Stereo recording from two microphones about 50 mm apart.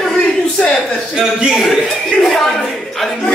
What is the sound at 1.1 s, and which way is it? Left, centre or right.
Speech, centre.